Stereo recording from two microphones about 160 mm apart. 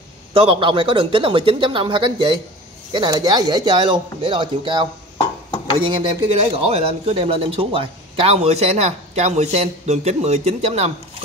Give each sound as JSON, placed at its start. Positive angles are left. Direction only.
{"t": 0.3, "sound": "speech", "side_deg": -35}